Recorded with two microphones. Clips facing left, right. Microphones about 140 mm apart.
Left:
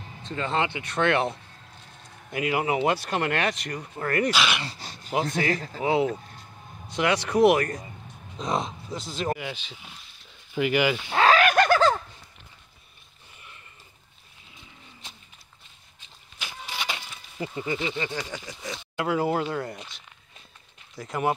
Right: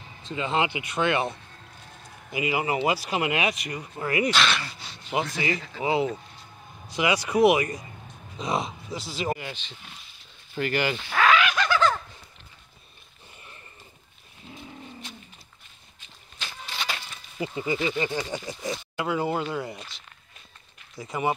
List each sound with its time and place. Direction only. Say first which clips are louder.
0.3 s speech: right 1 dB; 10° right (ahead or behind)
4.3 s speech: right 1 dB; 10° left (ahead or behind)
4.7 s a sound: left 2 dB; 40° left (ahead or behind)
5.8 s speech: left 1 dB; centre (ahead or behind)
11.1 s speech: left 1 dB; 30° left (ahead or behind)
11.3 s a sound: left 4 dB; 50° left (ahead or behind)
16.3 s a sound: left 1 dB; 10° left (ahead or behind)
17.6 s speech: right 2 dB; 10° right (ahead or behind)
18.0 s speech: right 4 dB; 25° right (ahead or behind)
18.9 s speech: left 3 dB; centre (ahead or behind)
21.0 s speech: left 1 dB; centre (ahead or behind)